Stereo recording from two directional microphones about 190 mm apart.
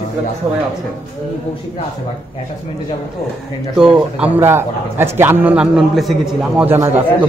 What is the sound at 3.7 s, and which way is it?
A man's voice, 5° right (ahead or behind).